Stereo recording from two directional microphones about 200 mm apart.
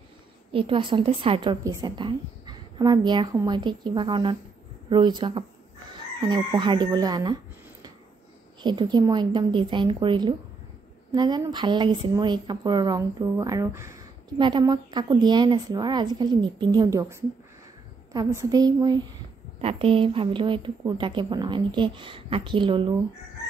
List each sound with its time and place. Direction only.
0.5 s a woman's voice: 25° right (ahead or behind)
8.6 s a woman's voice: 20° right (ahead or behind)
18.1 s a woman's voice: 15° right (ahead or behind)